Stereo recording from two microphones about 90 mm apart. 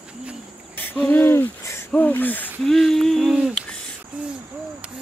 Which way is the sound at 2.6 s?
5° left (ahead or behind).